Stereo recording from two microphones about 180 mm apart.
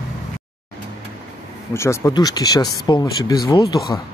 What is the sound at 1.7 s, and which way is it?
Speech, 15° left (ahead or behind).